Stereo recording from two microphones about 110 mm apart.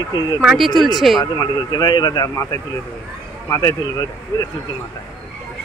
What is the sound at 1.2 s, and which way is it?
Speech, 35° left (ahead or behind).